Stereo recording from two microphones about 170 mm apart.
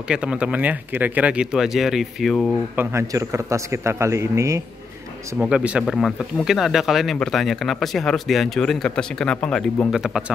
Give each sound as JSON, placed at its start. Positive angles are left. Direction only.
{"t": 0.1, "sound": "speech", "side_deg": -5}
{"t": 2.7, "sound": "speech", "side_deg": -15}
{"t": 5.4, "sound": "speech", "side_deg": -5}